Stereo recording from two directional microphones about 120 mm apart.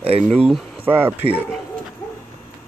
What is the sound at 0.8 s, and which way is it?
Speech, 15° right (ahead or behind).